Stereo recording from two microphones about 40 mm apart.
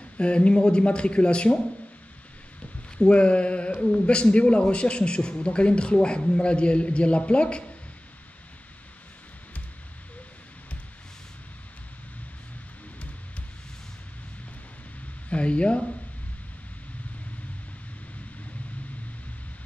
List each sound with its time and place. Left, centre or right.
0.2 s a man's voice: left
3.0 s a man's voice: left
15.2 s speech: left